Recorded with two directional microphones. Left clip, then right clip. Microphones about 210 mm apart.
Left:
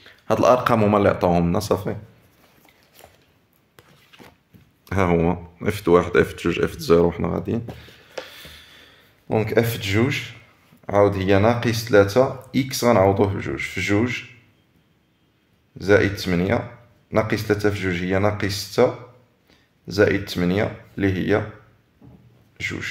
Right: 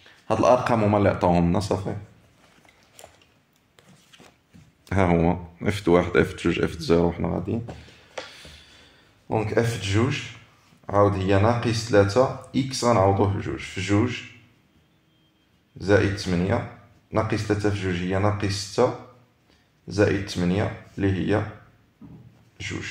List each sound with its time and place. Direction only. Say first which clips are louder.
0.0 s a man's voice: left 3 dB; 25° left (ahead or behind)
4.8 s speech: left 2 dB; 5° left (ahead or behind); by 14.2 s 30° left (ahead or behind)
15.8 s speech: left 3 dB; 30° left (ahead or behind)
19.9 s speech: left 4 dB; 30° left (ahead or behind)
22.6 s speech: left 5 dB; 30° left (ahead or behind)